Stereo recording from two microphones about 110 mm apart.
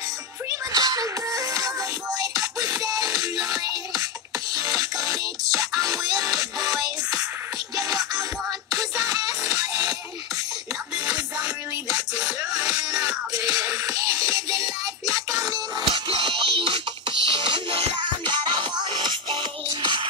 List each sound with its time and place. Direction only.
0.5 s music: 35° right (ahead or behind)
11.1 s music: 10° right (ahead or behind)
13.4 s music: 35° right (ahead or behind)
15.9 s music: 50° right (ahead or behind)